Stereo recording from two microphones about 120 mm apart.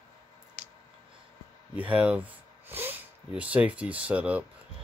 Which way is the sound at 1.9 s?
10° right (ahead or behind).